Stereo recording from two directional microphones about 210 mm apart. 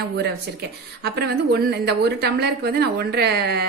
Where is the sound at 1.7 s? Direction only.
50° right (ahead or behind).